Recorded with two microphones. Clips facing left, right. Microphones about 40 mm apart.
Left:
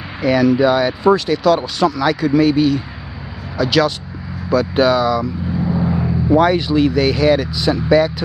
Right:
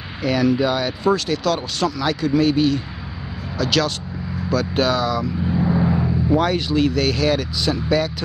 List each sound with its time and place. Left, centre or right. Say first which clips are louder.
0.2 s speech: left 5 dB; centre
1.0 s speech: left 5 dB; left
5.5 s vehicle: right 1 dB; centre
5.9 s speech: left 4 dB; centre